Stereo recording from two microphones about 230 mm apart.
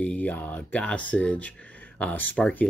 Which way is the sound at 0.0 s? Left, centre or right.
Centre.